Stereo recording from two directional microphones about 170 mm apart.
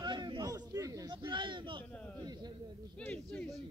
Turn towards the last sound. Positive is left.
turn(degrees=5)  # may be behind; listen again after turning